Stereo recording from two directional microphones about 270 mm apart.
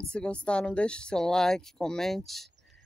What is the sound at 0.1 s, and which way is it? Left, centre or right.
Speech, centre.